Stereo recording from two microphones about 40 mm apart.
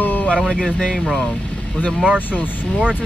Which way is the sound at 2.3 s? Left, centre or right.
Left.